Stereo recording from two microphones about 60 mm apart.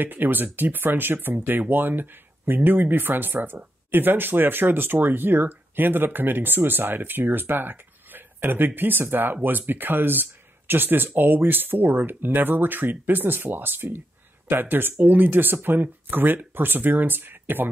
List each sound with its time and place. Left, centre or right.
0.0 s speech: right